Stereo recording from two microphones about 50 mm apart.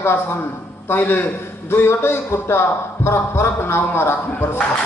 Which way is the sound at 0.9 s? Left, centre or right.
Left.